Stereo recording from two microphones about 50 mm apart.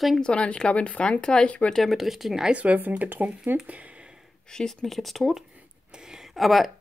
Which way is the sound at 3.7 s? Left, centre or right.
Right.